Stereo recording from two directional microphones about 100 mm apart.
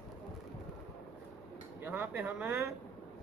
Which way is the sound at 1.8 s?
20° right (ahead or behind).